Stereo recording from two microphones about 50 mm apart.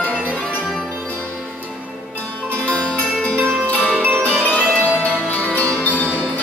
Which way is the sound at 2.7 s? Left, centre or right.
Left.